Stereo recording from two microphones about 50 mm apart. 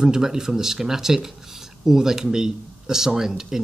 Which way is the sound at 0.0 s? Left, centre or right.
Centre.